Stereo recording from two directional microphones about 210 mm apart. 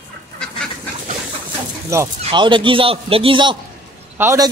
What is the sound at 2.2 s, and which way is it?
A man's voice, 25° right (ahead or behind).